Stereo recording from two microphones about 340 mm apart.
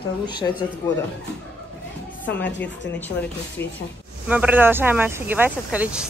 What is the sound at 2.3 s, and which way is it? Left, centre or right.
Speech, centre.